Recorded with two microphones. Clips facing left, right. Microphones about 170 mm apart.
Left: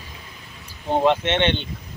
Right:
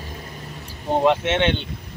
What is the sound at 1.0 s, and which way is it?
Speech, 5° right (ahead or behind).